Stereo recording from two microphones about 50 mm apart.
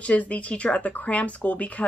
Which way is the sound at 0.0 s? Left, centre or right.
Left.